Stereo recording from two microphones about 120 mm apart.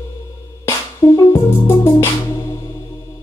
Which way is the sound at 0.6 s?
25° left (ahead or behind).